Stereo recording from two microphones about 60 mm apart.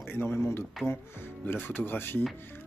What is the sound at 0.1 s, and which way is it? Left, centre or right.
Speech, left.